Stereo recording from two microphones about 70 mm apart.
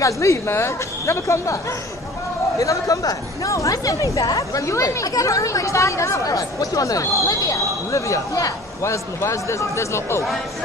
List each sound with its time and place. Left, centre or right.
0.0 s speech: left
2.6 s speech: left